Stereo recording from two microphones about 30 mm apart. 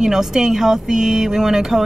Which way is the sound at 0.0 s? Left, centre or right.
Centre.